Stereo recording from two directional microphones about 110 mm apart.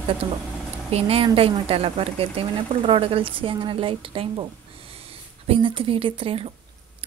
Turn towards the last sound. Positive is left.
turn(degrees=-60)  # may be behind; listen again after turning